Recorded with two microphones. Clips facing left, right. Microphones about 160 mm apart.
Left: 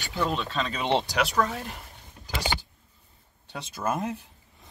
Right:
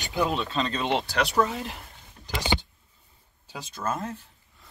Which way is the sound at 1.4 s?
Centre (ahead or behind).